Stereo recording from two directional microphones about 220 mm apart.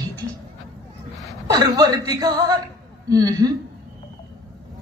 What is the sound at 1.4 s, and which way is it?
A woman's voice, 15° right (ahead or behind).